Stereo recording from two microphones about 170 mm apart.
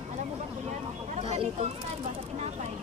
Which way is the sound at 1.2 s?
35° right (ahead or behind).